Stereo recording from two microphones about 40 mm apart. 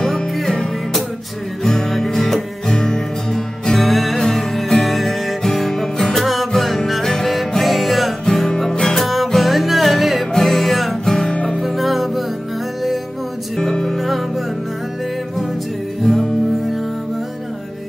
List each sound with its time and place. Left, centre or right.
1.6 s music: centre
8.7 s music: centre
9.0 s music: centre
13.6 s music: centre
13.9 s music: centre
16.0 s music: centre